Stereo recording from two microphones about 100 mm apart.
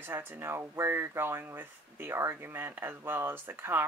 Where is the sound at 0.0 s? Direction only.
25° right (ahead or behind).